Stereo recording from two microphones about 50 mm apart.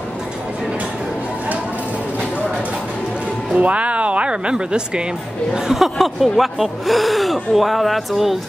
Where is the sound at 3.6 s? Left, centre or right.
Right.